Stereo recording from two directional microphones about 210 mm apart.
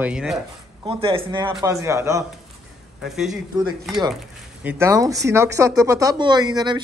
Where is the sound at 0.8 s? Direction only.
25° right (ahead or behind).